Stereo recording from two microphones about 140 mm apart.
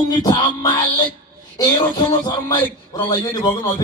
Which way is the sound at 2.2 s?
30° left (ahead or behind).